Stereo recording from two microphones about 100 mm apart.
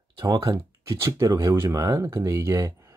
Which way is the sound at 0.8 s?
30° right (ahead or behind).